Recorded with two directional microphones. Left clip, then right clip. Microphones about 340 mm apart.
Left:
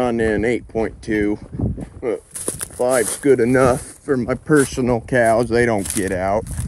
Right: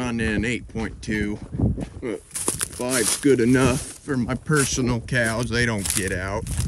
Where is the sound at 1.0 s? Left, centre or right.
Centre.